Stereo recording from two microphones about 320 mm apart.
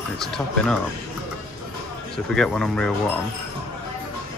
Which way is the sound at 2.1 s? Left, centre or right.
Centre.